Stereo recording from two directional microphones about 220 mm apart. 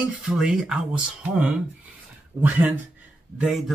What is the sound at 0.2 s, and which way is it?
Speech, centre (ahead or behind).